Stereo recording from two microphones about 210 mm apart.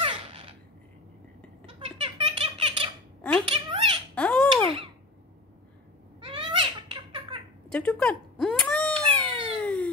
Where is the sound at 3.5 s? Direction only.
25° right (ahead or behind).